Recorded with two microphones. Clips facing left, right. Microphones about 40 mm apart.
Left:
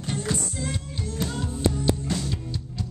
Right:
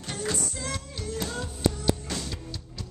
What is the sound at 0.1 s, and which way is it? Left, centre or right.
Music, centre.